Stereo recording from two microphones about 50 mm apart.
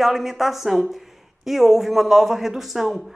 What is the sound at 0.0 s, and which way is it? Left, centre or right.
Speech, centre.